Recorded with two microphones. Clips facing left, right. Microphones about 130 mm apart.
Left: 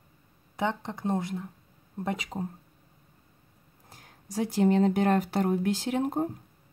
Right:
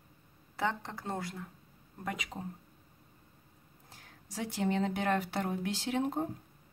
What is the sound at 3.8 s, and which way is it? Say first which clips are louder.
Speech: left 7 dB; 40° left (ahead or behind).